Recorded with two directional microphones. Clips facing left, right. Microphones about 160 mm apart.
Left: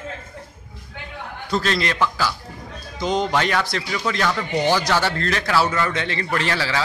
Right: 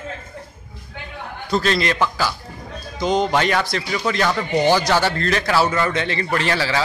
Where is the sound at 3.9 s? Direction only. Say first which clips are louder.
Right 2 dB; 25° right (ahead or behind).